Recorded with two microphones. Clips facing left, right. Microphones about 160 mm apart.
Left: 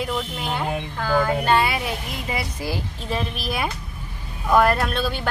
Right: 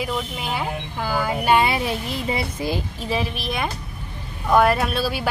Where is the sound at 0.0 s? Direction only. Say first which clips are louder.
Even; 5° right (ahead or behind); by 2.8 s 20° right (ahead or behind).